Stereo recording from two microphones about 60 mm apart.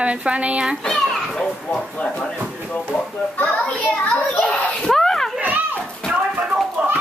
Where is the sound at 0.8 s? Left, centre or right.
Centre.